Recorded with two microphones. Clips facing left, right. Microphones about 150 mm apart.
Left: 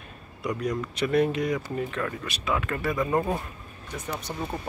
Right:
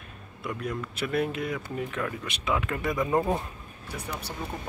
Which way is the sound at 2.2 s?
20° right (ahead or behind).